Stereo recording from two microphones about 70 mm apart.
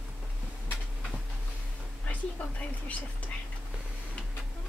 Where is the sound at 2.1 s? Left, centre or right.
Left.